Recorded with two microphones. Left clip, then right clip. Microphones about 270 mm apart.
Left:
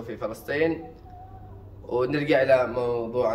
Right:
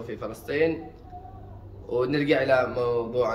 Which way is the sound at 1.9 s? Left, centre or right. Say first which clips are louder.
Even; centre.